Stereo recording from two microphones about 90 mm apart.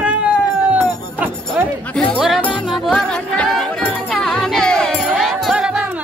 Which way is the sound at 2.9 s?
10° left (ahead or behind).